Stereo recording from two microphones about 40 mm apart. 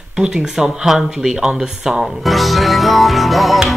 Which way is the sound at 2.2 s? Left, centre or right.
Centre.